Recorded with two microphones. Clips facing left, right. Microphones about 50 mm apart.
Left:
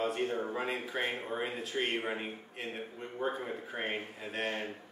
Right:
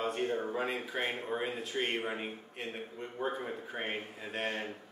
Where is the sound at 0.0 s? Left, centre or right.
Centre.